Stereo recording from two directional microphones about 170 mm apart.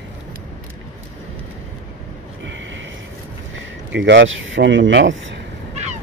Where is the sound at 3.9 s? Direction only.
90° right.